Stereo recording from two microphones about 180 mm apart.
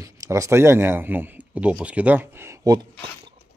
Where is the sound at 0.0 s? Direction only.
15° right (ahead or behind).